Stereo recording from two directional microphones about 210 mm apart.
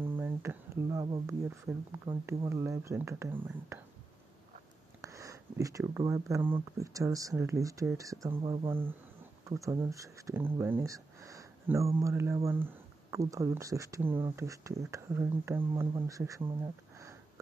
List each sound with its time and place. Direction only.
0.0 s a sound: 10° right (ahead or behind)
1.7 s speech: 20° right (ahead or behind)
5.0 s speech: 15° right (ahead or behind)